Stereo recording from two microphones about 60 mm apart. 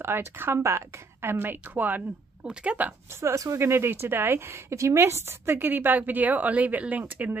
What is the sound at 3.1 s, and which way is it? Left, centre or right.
Speech, right.